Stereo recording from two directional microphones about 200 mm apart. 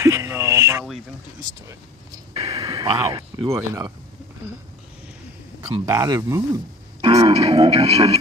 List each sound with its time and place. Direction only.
0.0 s a sound: 15° right (ahead or behind)
2.4 s speech: 20° right (ahead or behind)
5.7 s speech: 15° right (ahead or behind)